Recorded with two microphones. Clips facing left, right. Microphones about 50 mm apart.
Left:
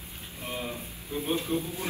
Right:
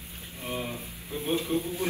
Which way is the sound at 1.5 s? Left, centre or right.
Right.